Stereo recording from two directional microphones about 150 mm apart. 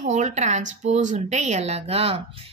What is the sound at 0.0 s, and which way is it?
A woman's voice, 55° right (ahead or behind).